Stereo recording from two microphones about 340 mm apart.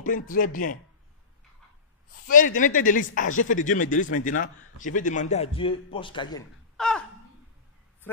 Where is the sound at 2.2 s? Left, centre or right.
Left.